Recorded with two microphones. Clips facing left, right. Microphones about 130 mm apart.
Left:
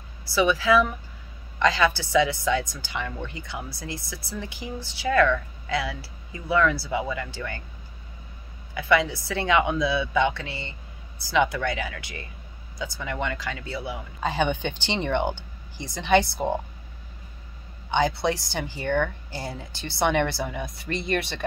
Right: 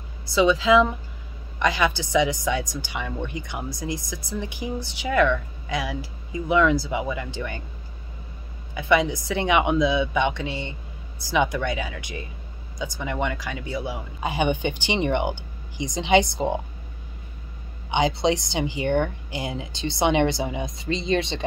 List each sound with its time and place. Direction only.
0.3 s a woman's voice: 20° right (ahead or behind)
8.7 s a woman's voice: 20° right (ahead or behind)
17.9 s a woman's voice: 20° right (ahead or behind)